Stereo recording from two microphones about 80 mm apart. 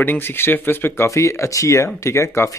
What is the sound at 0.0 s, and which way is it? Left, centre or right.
Speech, left.